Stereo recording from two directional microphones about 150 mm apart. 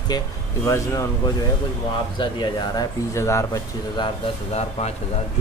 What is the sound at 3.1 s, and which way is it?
Speech, 20° left (ahead or behind).